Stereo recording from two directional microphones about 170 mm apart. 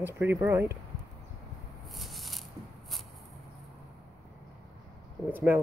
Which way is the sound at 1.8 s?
Centre (ahead or behind).